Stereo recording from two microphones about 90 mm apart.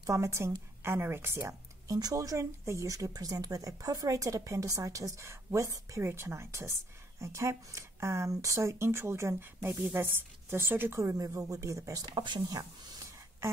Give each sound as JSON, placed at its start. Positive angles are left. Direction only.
{"t": 0.0, "sound": "speech", "side_deg": -35}
{"t": 1.9, "sound": "speech", "side_deg": -45}